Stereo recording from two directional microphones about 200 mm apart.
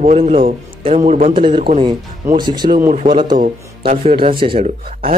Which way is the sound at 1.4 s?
25° right (ahead or behind).